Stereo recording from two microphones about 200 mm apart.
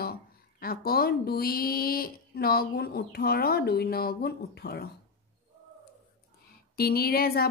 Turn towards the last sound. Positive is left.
turn(degrees=50)  # may be behind; listen again after turning